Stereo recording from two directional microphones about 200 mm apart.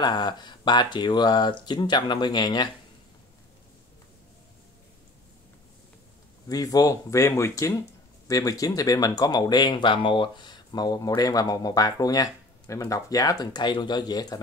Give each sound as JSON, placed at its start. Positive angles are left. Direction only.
{"t": 0.0, "sound": "speech", "side_deg": 20}
{"t": 6.4, "sound": "speech", "side_deg": 15}